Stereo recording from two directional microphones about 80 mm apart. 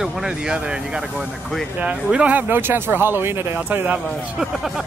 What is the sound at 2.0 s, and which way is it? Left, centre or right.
Speech, centre.